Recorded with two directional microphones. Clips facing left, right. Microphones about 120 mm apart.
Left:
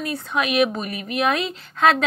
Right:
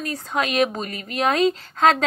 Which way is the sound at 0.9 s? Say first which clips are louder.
Left 3 dB; 15° left (ahead or behind).